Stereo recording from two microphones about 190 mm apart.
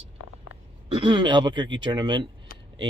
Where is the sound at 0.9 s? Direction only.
25° right (ahead or behind).